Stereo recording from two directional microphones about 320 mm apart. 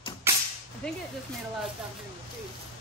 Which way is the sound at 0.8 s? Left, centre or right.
Centre.